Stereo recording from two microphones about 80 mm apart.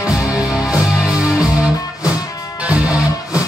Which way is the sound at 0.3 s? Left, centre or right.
Centre.